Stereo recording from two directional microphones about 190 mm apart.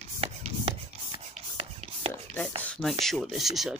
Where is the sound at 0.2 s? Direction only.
30° right (ahead or behind).